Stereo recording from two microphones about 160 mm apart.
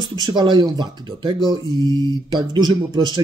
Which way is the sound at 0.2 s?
30° right (ahead or behind).